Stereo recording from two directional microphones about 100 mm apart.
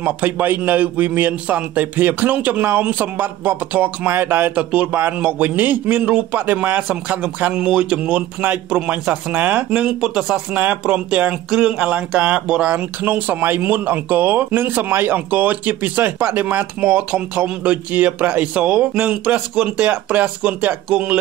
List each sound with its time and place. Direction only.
0.0 s speech: 20° right (ahead or behind)
9.8 s speech: 5° right (ahead or behind)